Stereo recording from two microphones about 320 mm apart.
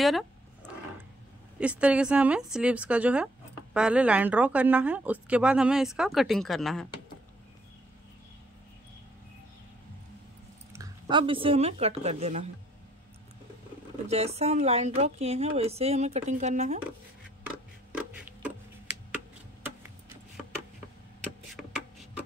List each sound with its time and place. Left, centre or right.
1.6 s a woman's voice: centre
10.7 s speech: centre
14.0 s speech: centre
17.9 s a sound: centre